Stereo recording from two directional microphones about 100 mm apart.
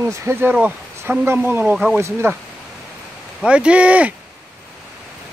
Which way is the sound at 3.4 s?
10° right (ahead or behind).